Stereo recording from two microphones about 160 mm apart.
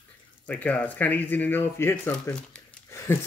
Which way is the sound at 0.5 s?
10° left (ahead or behind).